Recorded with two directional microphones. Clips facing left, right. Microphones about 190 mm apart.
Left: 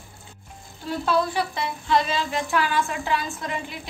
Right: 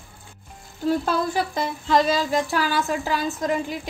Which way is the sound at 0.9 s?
45° right (ahead or behind).